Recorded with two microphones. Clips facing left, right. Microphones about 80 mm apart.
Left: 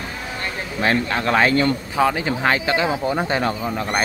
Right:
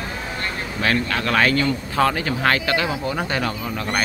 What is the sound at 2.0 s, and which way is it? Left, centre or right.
Speech, centre.